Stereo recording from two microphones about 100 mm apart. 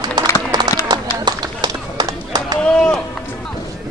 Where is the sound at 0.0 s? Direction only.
45° right (ahead or behind).